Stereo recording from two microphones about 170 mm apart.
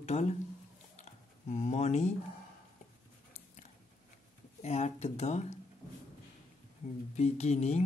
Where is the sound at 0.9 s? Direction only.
40° left (ahead or behind).